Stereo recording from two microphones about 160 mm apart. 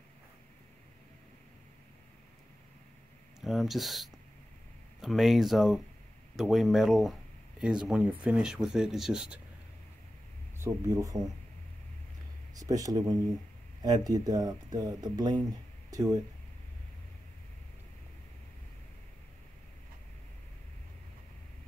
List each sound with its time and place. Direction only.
3.3 s speech: centre (ahead or behind)
10.6 s speech: 20° right (ahead or behind)
12.5 s speech: 20° right (ahead or behind)